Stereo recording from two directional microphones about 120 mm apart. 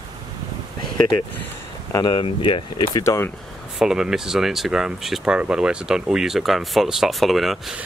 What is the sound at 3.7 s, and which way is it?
Speech, 5° right (ahead or behind).